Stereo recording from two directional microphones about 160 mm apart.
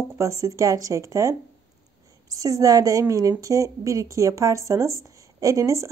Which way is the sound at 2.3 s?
20° right (ahead or behind).